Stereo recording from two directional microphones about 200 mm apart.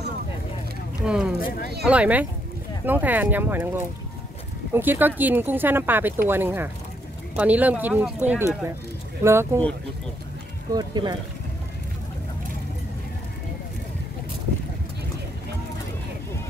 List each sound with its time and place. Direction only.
1.0 s speech: 5° right (ahead or behind)
10.7 s speech: 20° right (ahead or behind)